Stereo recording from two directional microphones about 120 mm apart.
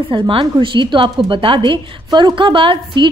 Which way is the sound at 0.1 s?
45° right (ahead or behind).